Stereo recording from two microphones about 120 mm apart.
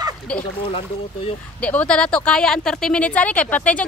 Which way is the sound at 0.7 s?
50° left (ahead or behind).